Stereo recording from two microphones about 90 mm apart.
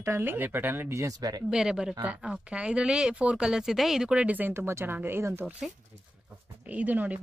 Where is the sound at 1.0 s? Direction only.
45° right (ahead or behind).